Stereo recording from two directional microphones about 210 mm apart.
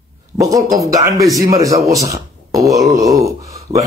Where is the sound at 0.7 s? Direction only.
15° right (ahead or behind).